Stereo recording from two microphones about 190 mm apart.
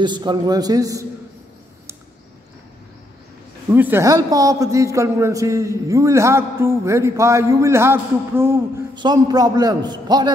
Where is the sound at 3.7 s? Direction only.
10° right (ahead or behind).